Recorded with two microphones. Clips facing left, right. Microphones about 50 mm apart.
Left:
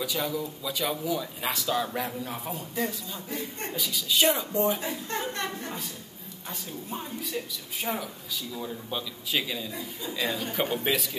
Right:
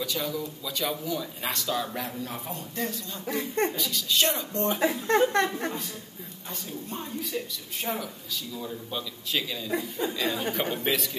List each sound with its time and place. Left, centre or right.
0.0 s speech: centre
3.3 s speech: right
3.7 s a man's voice: centre
4.7 s a woman's voice: right
6.9 s a man's voice: centre